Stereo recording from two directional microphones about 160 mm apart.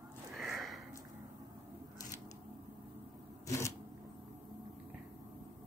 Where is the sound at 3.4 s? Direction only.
15° left (ahead or behind).